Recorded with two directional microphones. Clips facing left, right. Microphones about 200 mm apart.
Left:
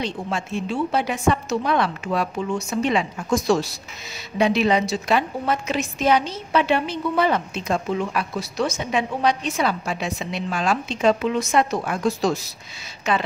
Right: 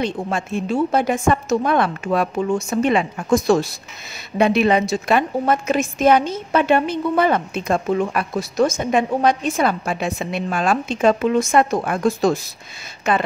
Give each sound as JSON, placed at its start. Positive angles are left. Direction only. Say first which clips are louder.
{"t": 0.0, "sound": "a woman's voice", "louder": "right 4 dB", "side_deg": -50}